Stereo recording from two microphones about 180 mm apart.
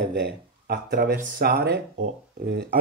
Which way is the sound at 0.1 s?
65° right (ahead or behind).